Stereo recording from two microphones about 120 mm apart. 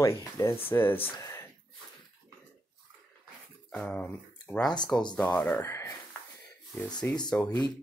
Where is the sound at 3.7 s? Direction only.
10° left (ahead or behind).